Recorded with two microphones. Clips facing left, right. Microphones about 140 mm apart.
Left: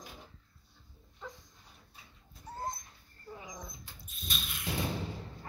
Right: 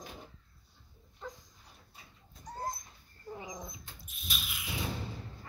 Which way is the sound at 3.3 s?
20° right (ahead or behind).